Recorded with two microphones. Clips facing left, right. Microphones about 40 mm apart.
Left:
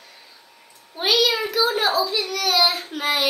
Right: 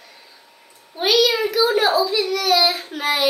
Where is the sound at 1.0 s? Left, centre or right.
Centre.